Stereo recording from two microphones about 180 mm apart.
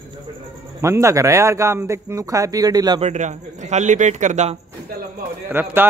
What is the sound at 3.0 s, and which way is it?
A man's voice, 40° right (ahead or behind).